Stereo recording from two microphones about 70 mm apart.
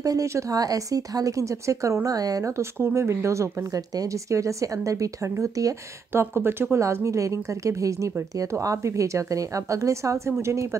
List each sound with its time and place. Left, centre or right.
0.0 s speech: right
2.0 s speech: right
3.7 s speech: right
6.1 s speech: right